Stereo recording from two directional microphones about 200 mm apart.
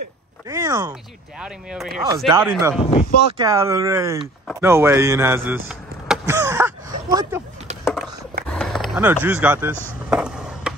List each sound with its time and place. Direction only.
0.5 s speech: 15° right (ahead or behind)
1.4 s speech: 5° right (ahead or behind)
2.1 s speech: 20° right (ahead or behind)
2.8 s speech: 30° left (ahead or behind)
3.3 s speech: 15° right (ahead or behind)
6.2 s a sound: 15° right (ahead or behind)
7.8 s a sound: 5° right (ahead or behind)
9.0 s speech: 10° right (ahead or behind)
10.0 s a sound: 5° right (ahead or behind)